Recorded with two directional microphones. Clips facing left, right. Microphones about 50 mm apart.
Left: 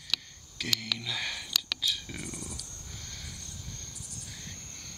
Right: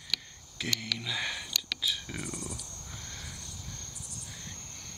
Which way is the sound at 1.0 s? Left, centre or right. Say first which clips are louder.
Right 1 dB; centre.